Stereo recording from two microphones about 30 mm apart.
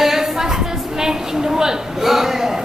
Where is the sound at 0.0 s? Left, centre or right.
Centre.